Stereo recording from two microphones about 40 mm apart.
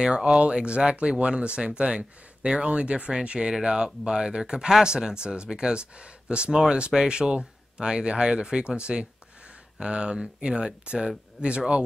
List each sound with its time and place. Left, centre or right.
0.0 s speech: right